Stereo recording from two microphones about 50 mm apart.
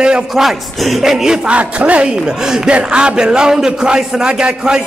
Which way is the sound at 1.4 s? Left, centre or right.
Right.